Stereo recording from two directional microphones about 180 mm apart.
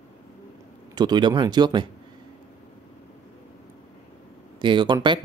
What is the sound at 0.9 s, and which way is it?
Speech, 25° right (ahead or behind).